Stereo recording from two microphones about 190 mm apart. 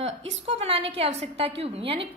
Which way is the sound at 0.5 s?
30° right (ahead or behind).